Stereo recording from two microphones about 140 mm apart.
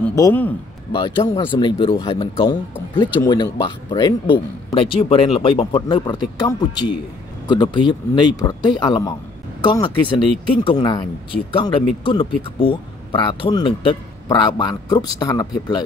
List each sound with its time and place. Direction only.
0.1 s a man's voice: 20° left (ahead or behind)
0.9 s speech: 30° left (ahead or behind)